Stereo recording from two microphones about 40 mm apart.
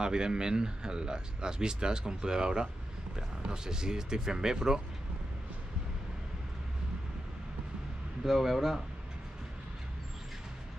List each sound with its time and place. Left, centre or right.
0.0 s speech: centre
8.3 s speech: centre